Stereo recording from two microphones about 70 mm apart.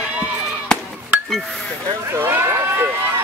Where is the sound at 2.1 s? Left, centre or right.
Right.